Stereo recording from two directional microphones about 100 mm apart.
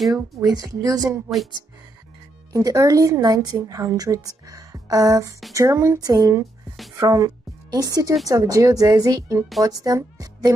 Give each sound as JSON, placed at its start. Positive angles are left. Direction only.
{"t": 0.1, "sound": "a woman's voice", "side_deg": -40}
{"t": 2.5, "sound": "a woman's voice", "side_deg": -35}